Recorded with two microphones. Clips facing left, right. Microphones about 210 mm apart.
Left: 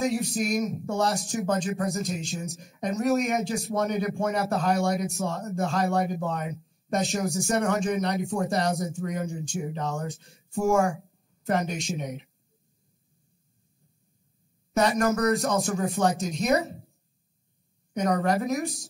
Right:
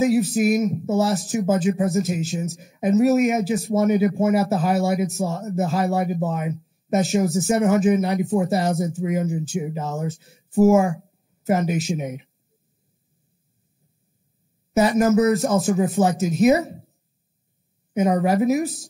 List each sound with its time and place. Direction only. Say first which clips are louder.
0.0 s speech: right 8 dB; 5° right (ahead or behind)
14.7 s speech: right 6 dB; 5° right (ahead or behind)
17.9 s speech: right 5 dB; centre (ahead or behind)